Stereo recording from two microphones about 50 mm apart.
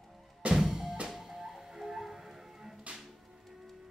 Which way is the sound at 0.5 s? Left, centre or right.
Centre.